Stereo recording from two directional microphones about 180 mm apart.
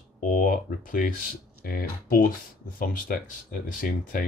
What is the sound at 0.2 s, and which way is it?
Speech, 50° left (ahead or behind).